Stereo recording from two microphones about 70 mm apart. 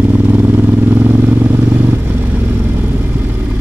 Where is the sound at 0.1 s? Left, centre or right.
Right.